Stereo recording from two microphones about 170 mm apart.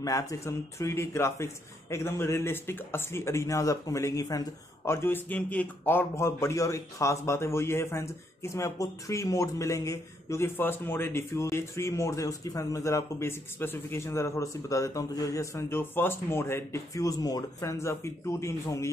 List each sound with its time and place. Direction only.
0.0 s speech: 20° left (ahead or behind)